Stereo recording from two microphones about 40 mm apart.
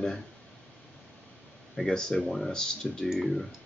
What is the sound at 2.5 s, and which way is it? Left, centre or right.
Mantra, centre.